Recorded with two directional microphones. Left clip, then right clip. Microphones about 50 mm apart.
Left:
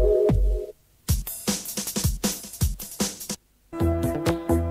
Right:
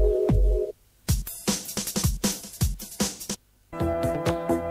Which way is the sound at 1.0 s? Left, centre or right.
Right.